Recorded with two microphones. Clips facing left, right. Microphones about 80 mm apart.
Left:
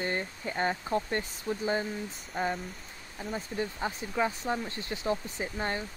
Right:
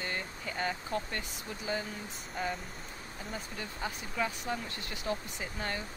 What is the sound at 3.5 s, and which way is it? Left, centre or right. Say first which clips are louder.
Speech: left 7 dB; left.